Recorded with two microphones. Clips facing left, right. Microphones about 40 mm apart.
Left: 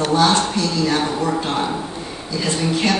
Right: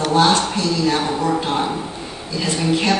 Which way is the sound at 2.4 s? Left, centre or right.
Right.